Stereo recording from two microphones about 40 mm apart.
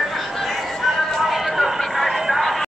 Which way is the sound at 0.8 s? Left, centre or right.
Centre.